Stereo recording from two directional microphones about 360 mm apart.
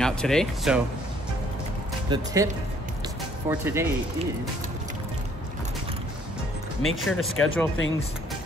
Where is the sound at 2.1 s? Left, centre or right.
Centre.